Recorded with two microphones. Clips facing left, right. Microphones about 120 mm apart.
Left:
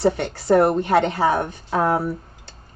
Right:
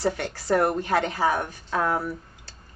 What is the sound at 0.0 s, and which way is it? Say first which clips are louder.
A woman's voice: left 6 dB; 25° left (ahead or behind).